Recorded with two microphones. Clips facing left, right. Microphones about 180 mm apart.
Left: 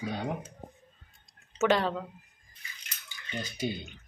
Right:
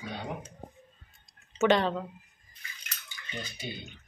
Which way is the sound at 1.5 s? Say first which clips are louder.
Right 2 dB; 5° left (ahead or behind).